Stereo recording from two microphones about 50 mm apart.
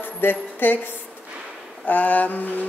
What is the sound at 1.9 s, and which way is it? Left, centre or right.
Speech, left.